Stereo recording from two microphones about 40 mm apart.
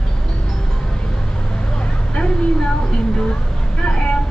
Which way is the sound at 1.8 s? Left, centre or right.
Left.